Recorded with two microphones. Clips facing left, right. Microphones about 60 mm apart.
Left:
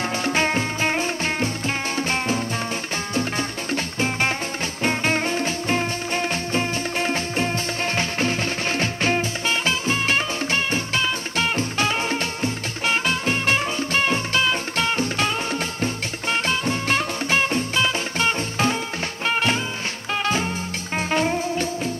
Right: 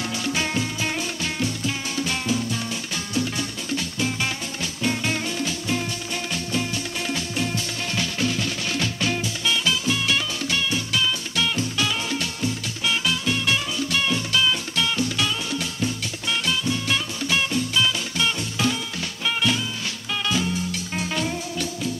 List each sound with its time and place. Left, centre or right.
0.2 s music: left
21.1 s music: left